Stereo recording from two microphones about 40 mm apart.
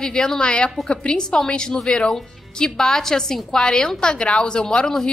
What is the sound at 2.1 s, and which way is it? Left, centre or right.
A woman's voice, centre.